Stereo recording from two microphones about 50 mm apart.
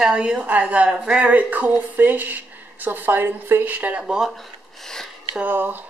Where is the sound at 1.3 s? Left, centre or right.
Right.